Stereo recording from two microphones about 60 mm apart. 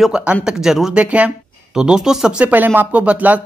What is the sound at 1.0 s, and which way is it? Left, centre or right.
Speech, right.